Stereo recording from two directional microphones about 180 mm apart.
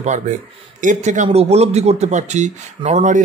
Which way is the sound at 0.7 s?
45° right (ahead or behind).